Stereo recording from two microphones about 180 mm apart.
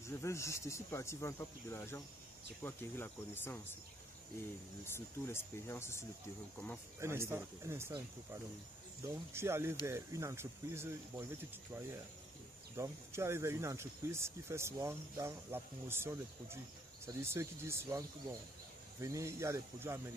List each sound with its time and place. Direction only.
0.0 s speech: 15° left (ahead or behind)
4.9 s speech: 15° left (ahead or behind)
7.0 s speech: 15° right (ahead or behind)
12.7 s speech: 15° right (ahead or behind)